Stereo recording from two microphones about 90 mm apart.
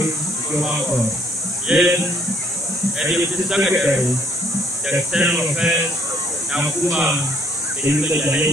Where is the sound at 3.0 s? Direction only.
10° right (ahead or behind).